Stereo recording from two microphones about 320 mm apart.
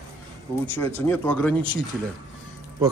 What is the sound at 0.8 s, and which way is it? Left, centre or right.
Speech, centre.